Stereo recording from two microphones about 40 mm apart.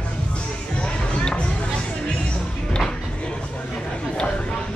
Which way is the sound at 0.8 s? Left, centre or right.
Left.